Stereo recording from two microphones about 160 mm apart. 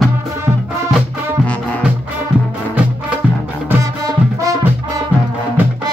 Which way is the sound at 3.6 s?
20° right (ahead or behind).